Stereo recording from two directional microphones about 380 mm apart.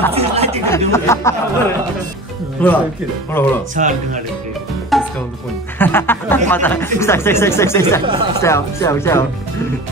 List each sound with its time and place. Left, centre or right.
0.1 s speech: centre
0.7 s speech: centre
2.6 s speech: centre
3.7 s speech: centre
4.9 s music: centre
5.8 s speech: centre
8.0 s speech: centre
8.4 s speech: centre